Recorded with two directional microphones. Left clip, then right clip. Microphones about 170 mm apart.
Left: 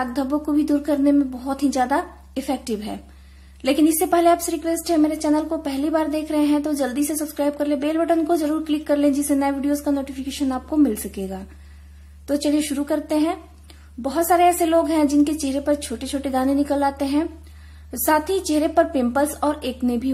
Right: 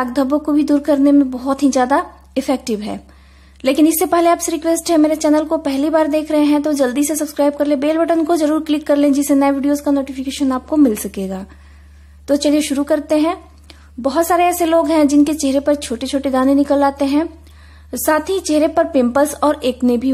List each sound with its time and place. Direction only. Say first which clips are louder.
0.0 s speech: right 7 dB; 35° right (ahead or behind)